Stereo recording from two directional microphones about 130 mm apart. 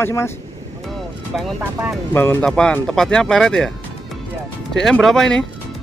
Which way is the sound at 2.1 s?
15° left (ahead or behind).